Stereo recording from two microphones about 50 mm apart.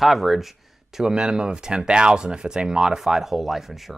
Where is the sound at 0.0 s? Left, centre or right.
Centre.